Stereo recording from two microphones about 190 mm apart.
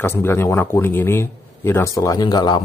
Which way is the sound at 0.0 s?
10° left (ahead or behind).